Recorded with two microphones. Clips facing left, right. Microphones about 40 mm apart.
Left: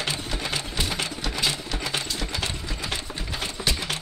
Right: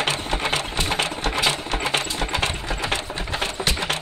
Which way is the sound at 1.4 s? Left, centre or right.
Right.